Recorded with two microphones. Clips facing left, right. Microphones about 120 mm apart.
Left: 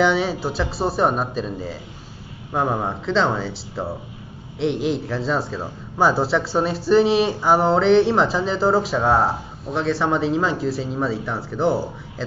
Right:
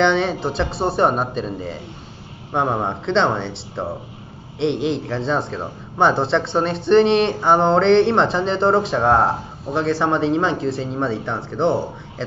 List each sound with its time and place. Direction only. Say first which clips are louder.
0.0 s speech: right 1 dB; 5° left (ahead or behind)
2.7 s speech: right 2 dB; 25° right (ahead or behind)
3.1 s speech: right 2 dB; centre (ahead or behind)